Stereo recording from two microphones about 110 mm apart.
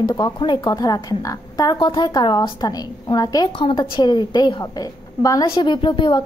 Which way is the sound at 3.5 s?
50° left (ahead or behind).